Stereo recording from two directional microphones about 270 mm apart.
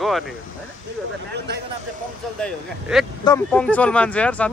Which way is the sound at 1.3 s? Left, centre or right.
Right.